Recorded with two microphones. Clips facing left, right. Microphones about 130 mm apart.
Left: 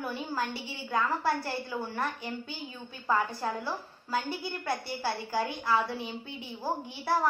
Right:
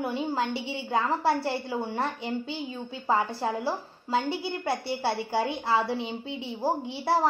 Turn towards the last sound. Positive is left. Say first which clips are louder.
# right 4 dB
turn(degrees=-25)  # may be behind; listen again after turning